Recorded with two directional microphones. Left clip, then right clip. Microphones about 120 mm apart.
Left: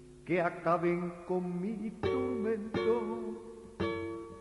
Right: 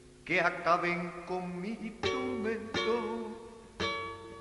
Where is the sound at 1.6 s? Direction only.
30° left (ahead or behind).